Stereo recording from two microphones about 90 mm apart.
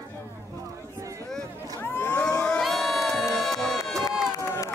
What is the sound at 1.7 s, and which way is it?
Crowd, 25° left (ahead or behind).